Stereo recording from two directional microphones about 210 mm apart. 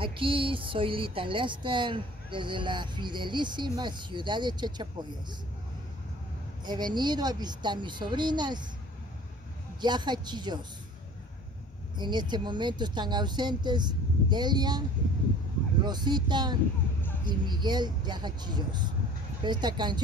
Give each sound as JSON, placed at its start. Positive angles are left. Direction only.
{"t": 0.0, "sound": "speech", "side_deg": -25}
{"t": 6.6, "sound": "speech", "side_deg": -20}
{"t": 9.8, "sound": "speech", "side_deg": -20}
{"t": 12.0, "sound": "speech", "side_deg": -20}